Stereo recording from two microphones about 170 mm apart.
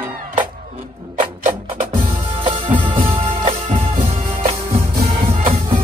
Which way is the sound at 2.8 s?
30° right (ahead or behind).